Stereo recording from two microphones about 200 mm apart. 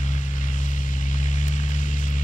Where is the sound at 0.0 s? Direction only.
40° left (ahead or behind).